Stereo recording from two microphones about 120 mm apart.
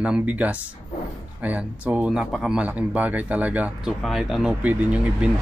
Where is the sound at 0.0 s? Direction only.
10° right (ahead or behind).